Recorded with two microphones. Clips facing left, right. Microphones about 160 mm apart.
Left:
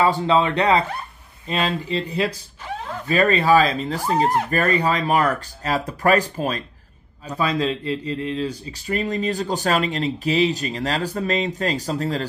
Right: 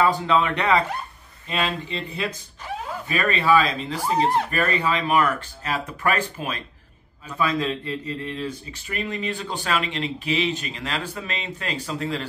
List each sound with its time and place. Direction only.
0.0 s speech: 30° left (ahead or behind)